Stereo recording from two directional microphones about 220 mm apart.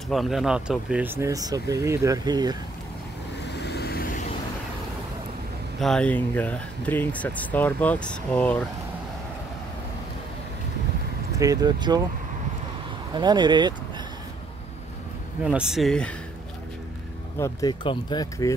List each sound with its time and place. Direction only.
0.1 s speech: centre (ahead or behind); by 2.5 s 20° right (ahead or behind)
3.4 s vehicle: 50° left (ahead or behind)
5.8 s speech: 5° left (ahead or behind)
11.3 s speech: 15° right (ahead or behind)
13.1 s speech: 20° right (ahead or behind)
15.4 s speech: 5° right (ahead or behind)
17.4 s speech: 15° left (ahead or behind)